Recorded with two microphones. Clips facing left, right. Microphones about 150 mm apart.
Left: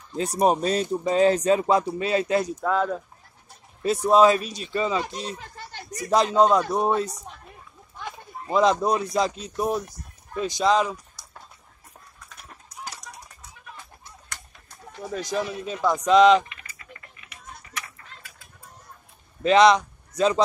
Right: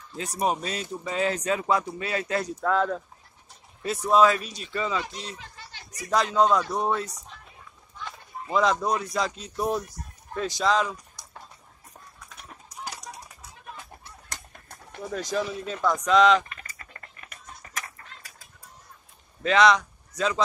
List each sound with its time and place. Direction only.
0.2 s speech: 35° left (ahead or behind)
2.6 s speech: 5° left (ahead or behind)
3.8 s speech: 25° left (ahead or behind)
5.4 s a sound: 50° left (ahead or behind)
6.0 s speech: 25° left (ahead or behind)
8.5 s speech: 25° left (ahead or behind)
12.4 s a sound: centre (ahead or behind)
15.1 s speech: 10° left (ahead or behind)
16.4 s a sound: 45° right (ahead or behind)
19.4 s speech: 25° left (ahead or behind)